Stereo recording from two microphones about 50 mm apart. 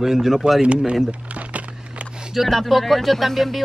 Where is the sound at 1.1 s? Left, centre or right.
Right.